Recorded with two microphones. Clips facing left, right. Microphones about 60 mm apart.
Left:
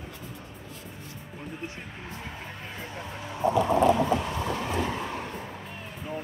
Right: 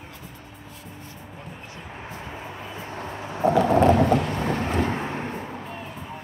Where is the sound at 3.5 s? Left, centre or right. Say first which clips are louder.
Right 4 dB; right.